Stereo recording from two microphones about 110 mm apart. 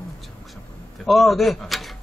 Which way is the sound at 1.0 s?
Centre (ahead or behind).